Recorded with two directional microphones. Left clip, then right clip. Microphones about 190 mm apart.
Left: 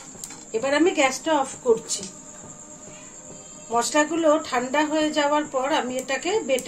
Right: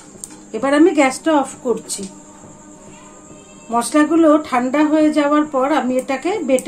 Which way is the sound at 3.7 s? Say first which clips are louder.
Right 7 dB; 45° right (ahead or behind).